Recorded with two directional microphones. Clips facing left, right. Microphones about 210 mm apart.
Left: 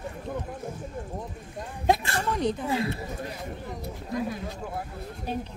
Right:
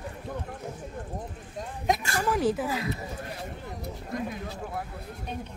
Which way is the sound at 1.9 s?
30° left (ahead or behind).